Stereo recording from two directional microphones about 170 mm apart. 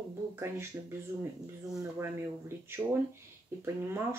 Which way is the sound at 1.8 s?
15° right (ahead or behind).